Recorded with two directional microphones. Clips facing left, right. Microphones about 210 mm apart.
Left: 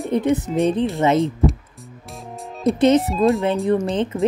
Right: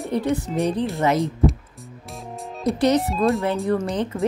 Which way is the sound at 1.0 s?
25° left (ahead or behind).